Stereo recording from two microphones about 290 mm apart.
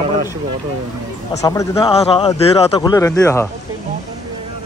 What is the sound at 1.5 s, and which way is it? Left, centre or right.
A man's voice, centre.